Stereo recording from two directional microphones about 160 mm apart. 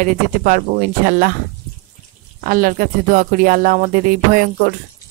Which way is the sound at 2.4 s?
60° right (ahead or behind).